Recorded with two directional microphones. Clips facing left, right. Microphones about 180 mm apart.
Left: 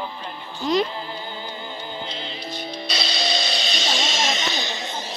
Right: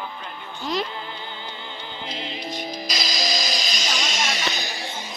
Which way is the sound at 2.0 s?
30° left (ahead or behind).